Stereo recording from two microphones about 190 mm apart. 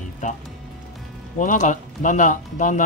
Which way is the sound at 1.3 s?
40° left (ahead or behind).